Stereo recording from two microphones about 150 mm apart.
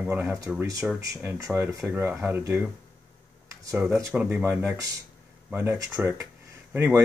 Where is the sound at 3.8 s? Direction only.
10° right (ahead or behind).